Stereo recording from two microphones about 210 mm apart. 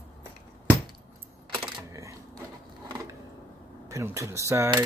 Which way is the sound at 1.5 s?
15° right (ahead or behind).